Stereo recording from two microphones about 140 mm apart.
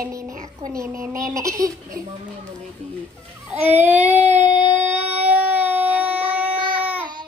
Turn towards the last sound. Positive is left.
turn(degrees=-10)  # may be behind; listen again after turning